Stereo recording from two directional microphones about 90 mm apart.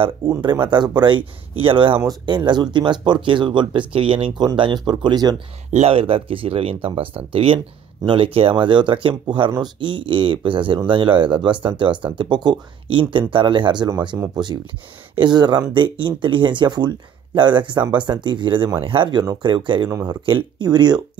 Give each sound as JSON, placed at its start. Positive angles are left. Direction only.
{"t": 0.4, "sound": "speech", "side_deg": -55}
{"t": 2.0, "sound": "speech", "side_deg": -60}
{"t": 4.8, "sound": "speech", "side_deg": -55}
{"t": 5.9, "sound": "speech", "side_deg": -90}
{"t": 15.7, "sound": "speech", "side_deg": -65}
{"t": 19.9, "sound": "speech", "side_deg": -45}
{"t": 20.2, "sound": "speech", "side_deg": -60}